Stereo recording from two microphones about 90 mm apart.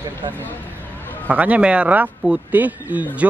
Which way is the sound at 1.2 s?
15° right (ahead or behind).